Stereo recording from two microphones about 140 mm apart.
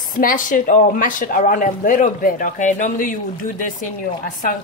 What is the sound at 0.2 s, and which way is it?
Speech, 75° left (ahead or behind).